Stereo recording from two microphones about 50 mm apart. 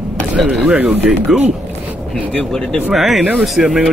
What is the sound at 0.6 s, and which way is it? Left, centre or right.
Speech, right.